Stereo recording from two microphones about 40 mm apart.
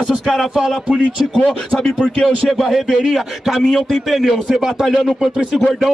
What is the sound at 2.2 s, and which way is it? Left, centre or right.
Speech, centre.